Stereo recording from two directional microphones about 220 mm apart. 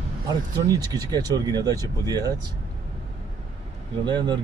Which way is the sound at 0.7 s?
15° right (ahead or behind).